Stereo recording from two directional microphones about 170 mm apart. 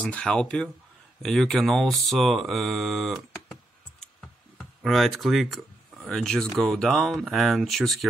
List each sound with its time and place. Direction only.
0.0 s speech: 5° left (ahead or behind)
4.0 s computer keyboard: 5° left (ahead or behind)
6.0 s speech: 5° left (ahead or behind)